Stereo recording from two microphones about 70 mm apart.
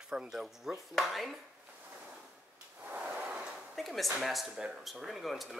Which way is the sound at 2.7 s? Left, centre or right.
Right.